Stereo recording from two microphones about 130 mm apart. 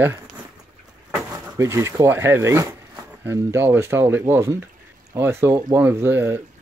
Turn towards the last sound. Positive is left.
turn(degrees=-15)  # may be behind; listen again after turning